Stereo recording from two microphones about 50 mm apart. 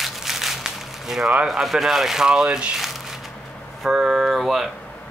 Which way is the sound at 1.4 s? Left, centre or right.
Centre.